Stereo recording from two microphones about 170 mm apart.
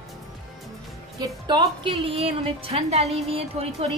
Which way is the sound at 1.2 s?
25° right (ahead or behind).